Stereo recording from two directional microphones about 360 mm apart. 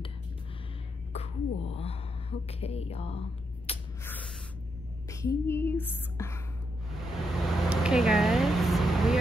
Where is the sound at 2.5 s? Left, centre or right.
Centre.